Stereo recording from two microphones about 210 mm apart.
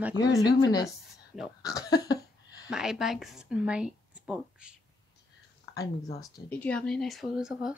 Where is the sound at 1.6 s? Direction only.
15° left (ahead or behind).